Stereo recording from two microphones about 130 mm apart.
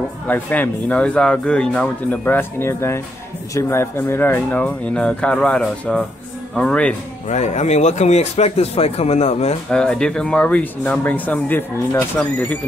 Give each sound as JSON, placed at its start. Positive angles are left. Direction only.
{"t": 0.3, "sound": "speech", "side_deg": 10}
{"t": 7.2, "sound": "speech", "side_deg": 65}
{"t": 9.7, "sound": "speech", "side_deg": 5}